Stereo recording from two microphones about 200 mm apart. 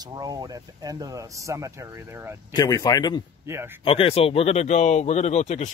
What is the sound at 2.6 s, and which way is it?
Speech, 20° left (ahead or behind).